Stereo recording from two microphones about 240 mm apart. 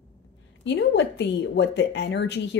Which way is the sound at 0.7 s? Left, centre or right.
Left.